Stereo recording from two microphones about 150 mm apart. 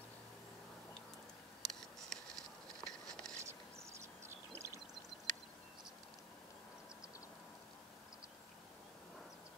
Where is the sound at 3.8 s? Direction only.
20° right (ahead or behind).